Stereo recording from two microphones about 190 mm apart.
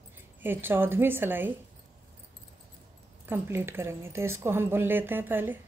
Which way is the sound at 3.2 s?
10° right (ahead or behind).